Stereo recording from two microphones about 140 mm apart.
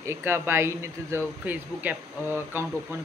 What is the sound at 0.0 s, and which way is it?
Speech, 15° right (ahead or behind).